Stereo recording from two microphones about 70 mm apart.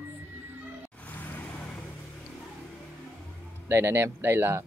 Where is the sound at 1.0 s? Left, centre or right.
Left.